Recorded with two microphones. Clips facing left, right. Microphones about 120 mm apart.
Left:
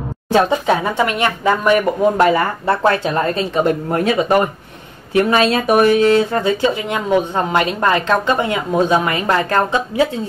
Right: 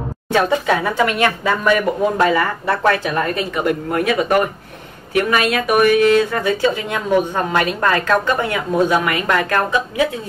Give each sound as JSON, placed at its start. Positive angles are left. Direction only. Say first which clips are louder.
{"t": 0.3, "sound": "speech", "louder": "left 2 dB", "side_deg": 20}